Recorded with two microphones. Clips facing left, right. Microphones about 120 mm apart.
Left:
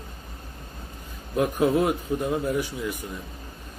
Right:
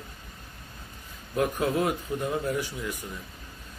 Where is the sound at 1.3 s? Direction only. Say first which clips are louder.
Left 4 dB; 25° left (ahead or behind).